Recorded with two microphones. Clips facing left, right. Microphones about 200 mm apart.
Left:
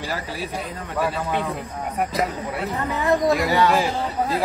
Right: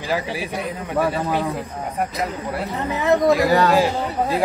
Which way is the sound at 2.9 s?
20° right (ahead or behind).